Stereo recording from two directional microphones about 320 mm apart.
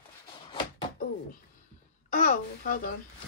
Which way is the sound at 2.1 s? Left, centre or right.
Left.